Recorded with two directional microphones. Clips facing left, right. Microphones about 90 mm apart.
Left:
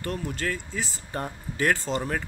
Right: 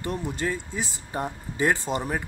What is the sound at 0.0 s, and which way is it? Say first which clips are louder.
Speech: right 2 dB; 20° right (ahead or behind).